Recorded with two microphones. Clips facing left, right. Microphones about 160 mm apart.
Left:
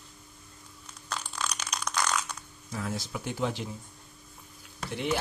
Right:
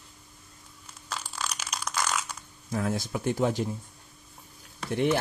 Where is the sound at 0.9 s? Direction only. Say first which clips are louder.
Even; 5° right (ahead or behind).